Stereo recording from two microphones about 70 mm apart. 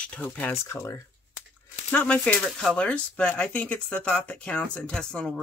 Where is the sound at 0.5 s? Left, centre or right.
Left.